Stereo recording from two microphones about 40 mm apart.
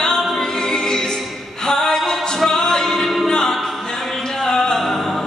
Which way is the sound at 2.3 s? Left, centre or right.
Centre.